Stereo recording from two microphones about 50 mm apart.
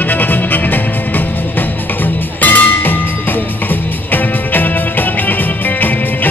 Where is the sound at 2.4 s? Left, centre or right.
Left.